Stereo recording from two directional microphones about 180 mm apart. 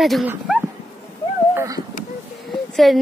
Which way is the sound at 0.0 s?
Centre (ahead or behind).